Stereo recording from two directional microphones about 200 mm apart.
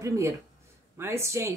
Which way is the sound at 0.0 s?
15° right (ahead or behind).